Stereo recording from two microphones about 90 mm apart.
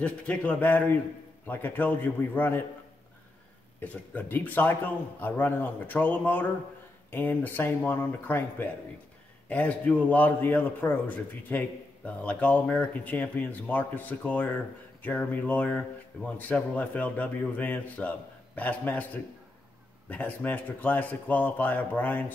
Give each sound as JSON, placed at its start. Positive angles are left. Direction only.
{"t": 0.0, "sound": "a man's voice", "side_deg": 15}
{"t": 3.8, "sound": "a man's voice", "side_deg": 20}
{"t": 20.1, "sound": "a man's voice", "side_deg": 15}